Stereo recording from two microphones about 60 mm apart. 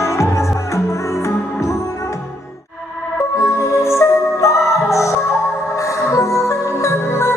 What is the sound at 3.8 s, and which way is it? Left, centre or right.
Music, left.